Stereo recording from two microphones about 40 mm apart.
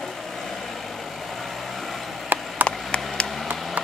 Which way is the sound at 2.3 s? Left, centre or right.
Right.